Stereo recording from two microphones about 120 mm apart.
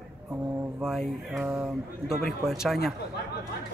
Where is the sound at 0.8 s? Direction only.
5° right (ahead or behind).